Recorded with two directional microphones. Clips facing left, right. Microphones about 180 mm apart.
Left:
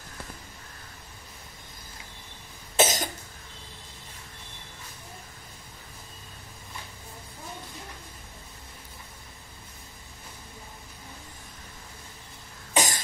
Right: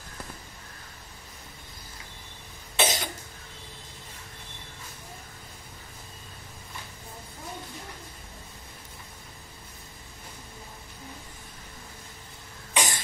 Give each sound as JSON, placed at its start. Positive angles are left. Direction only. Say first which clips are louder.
{"t": 2.7, "sound": "cough", "louder": "left 3 dB", "side_deg": 45}
{"t": 12.7, "sound": "cough", "louder": "left 2 dB", "side_deg": 40}